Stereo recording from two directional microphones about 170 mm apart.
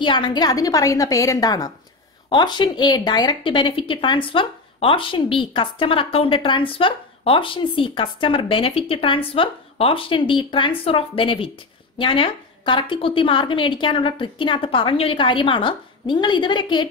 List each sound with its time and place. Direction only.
0.0 s a woman's voice: 30° left (ahead or behind)